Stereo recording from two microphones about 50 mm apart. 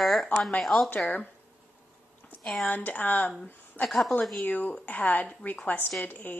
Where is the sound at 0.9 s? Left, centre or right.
Left.